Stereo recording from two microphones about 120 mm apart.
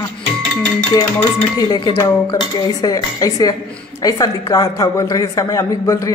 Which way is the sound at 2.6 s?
30° left (ahead or behind).